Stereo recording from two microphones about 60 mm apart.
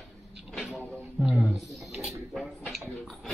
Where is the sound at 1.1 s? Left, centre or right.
Centre.